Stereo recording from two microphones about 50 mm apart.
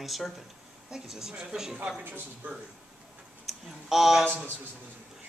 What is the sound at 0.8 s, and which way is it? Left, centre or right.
Speech, centre.